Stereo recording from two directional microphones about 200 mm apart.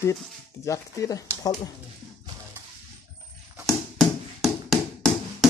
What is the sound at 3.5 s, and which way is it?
Tap, centre (ahead or behind).